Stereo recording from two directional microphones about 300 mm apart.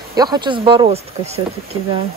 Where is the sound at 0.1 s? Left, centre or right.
Centre.